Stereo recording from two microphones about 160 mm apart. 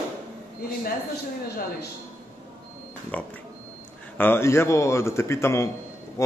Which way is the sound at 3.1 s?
10° left (ahead or behind).